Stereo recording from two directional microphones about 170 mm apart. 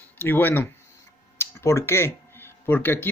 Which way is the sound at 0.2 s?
10° left (ahead or behind).